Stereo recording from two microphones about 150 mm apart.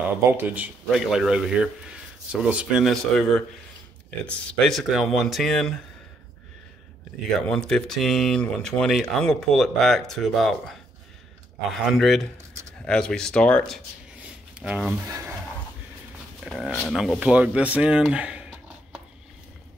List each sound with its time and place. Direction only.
0.3 s speech: 10° right (ahead or behind)
7.3 s speech: 5° left (ahead or behind)
14.2 s a sound: 5° right (ahead or behind)
15.0 s speech: 20° right (ahead or behind)
16.4 s speech: 5° right (ahead or behind)